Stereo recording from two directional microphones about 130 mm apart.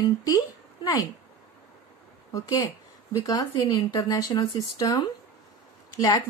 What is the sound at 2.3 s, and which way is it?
A woman's voice, 25° left (ahead or behind).